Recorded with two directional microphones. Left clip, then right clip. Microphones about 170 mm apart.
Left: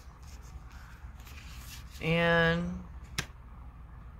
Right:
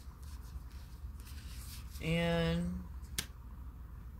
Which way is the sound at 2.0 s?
10° right (ahead or behind).